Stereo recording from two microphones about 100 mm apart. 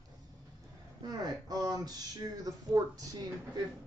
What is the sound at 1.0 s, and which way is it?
A man's voice, 40° right (ahead or behind).